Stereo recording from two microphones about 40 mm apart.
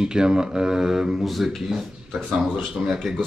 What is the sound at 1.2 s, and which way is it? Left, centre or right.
Speech, centre.